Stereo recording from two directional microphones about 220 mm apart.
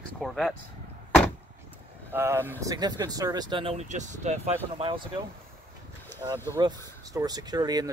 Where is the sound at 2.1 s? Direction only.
10° right (ahead or behind).